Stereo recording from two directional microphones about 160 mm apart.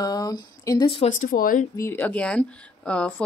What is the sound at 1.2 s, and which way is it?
Speech, 60° left (ahead or behind).